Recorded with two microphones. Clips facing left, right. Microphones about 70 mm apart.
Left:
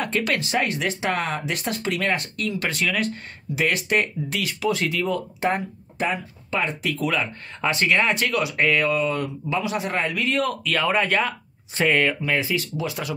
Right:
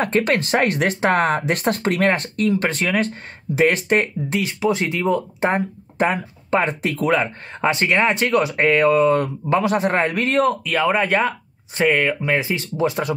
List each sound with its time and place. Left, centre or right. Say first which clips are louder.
0.0 s speech: right 5 dB; right
5.9 s speech: right 6 dB; right
10.5 s speech: right 3 dB; centre
11.8 s speech: right 2 dB; centre
12.3 s speech: right 3 dB; right